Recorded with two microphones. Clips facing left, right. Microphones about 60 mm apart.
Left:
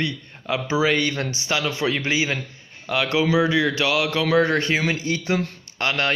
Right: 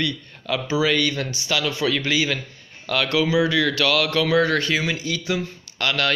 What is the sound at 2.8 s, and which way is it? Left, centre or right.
Speech, centre.